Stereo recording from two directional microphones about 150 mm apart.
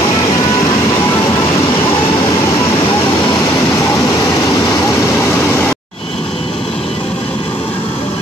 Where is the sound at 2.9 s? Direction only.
30° left (ahead or behind).